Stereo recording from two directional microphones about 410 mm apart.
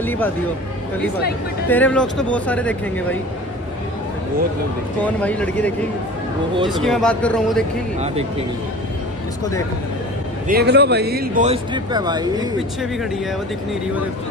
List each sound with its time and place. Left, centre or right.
0.0 s speech: centre
1.7 s speech: centre
5.0 s speech: centre
6.7 s speech: centre
10.5 s speech: right